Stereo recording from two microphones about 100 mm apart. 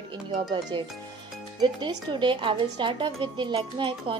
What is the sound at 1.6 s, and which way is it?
Speech, 50° right (ahead or behind).